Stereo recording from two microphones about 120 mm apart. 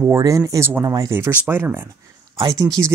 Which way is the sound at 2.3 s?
30° right (ahead or behind).